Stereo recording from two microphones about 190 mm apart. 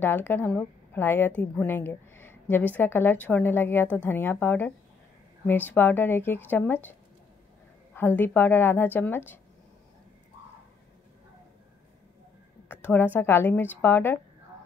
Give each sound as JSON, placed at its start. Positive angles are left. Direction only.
{"t": 0.0, "sound": "a woman's voice", "side_deg": 10}
{"t": 12.6, "sound": "a woman's voice", "side_deg": 10}